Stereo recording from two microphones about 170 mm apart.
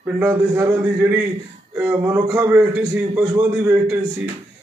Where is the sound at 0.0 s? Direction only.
15° right (ahead or behind).